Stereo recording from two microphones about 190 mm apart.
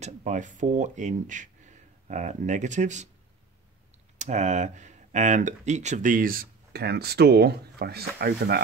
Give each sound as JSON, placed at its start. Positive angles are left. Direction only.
{"t": 0.0, "sound": "speech", "side_deg": -40}
{"t": 4.2, "sound": "speech", "side_deg": -40}